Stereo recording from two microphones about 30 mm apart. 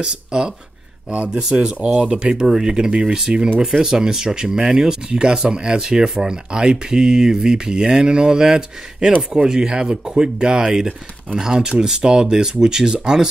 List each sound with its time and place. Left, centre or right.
0.0 s speech: right
1.5 s speech: right
2.4 s speech: centre
2.9 s speech: right